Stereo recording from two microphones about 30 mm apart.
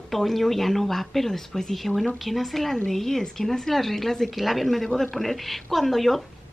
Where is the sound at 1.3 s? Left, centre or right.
Centre.